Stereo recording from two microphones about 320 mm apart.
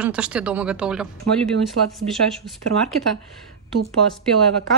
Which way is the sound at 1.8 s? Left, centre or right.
Right.